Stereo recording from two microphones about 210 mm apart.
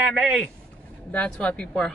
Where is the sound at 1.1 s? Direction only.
5° left (ahead or behind).